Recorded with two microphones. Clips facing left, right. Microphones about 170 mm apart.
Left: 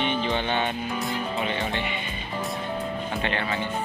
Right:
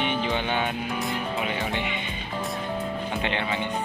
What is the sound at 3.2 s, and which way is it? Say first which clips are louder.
Speech: even; 15° right (ahead or behind).